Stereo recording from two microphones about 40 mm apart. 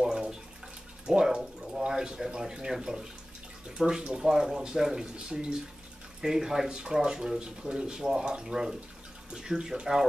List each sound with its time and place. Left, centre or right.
0.0 s bathtub: centre
1.0 s a sound: right
2.5 s speech: centre
3.6 s bathtub: right
4.2 s speech: centre